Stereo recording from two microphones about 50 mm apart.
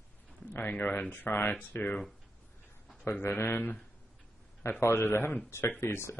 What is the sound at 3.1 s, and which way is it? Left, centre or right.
Speech, left.